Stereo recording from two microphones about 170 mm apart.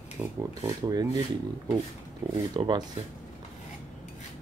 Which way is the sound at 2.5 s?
25° right (ahead or behind).